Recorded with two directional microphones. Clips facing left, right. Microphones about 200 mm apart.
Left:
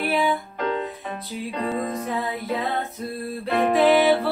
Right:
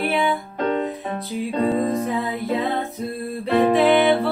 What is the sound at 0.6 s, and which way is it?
Music, 30° right (ahead or behind).